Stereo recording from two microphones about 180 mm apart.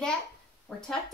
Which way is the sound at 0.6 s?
5° left (ahead or behind).